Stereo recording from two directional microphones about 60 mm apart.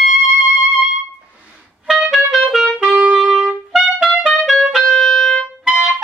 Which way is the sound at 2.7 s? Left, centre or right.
Right.